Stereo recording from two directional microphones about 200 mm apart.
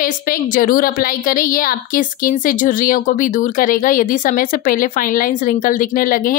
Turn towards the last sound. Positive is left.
turn(degrees=45)  # may be behind; listen again after turning